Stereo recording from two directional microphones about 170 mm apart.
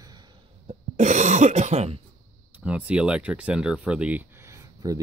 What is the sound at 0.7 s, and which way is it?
Cough, 45° right (ahead or behind).